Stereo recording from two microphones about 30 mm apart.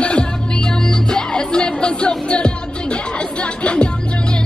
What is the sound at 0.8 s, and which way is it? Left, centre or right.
Music, left.